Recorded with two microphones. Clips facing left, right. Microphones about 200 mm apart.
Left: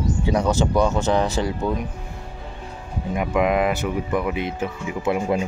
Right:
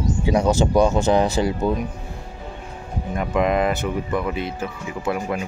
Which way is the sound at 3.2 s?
10° left (ahead or behind).